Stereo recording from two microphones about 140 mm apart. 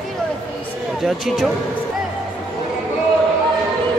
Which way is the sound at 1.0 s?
Centre (ahead or behind).